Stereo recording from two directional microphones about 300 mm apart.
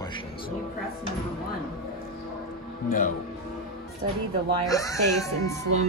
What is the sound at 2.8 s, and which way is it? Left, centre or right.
Speech, left.